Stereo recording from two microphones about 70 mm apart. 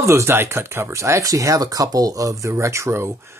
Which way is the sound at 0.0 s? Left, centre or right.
Right.